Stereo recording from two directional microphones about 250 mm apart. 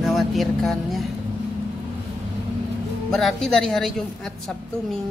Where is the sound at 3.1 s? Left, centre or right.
Centre.